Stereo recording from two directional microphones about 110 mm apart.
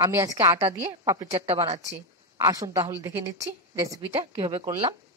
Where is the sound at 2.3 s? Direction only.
30° right (ahead or behind).